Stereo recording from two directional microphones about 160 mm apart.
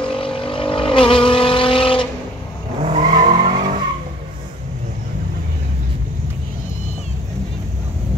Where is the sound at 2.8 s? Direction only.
45° right (ahead or behind).